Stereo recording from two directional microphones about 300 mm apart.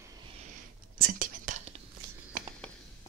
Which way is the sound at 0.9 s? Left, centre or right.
Right.